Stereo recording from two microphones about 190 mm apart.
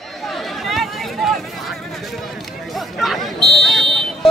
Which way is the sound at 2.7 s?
Centre (ahead or behind).